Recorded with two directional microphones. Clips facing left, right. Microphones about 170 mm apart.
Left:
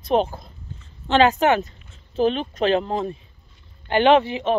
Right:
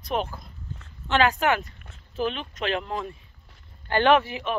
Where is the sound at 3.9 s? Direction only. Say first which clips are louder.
Left 4 dB; 20° left (ahead or behind).